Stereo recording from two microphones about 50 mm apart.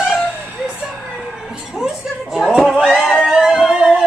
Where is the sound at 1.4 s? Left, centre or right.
Centre.